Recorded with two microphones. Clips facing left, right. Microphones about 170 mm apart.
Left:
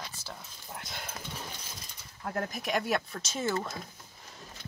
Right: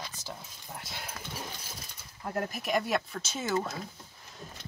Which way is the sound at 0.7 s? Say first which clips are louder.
Even; 5° right (ahead or behind).